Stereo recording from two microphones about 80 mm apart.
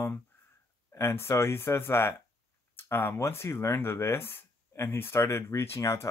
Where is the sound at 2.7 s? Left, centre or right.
Left.